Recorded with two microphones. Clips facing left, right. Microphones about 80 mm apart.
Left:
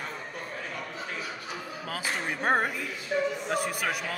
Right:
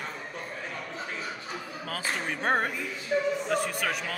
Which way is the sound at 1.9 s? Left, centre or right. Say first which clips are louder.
Even; centre.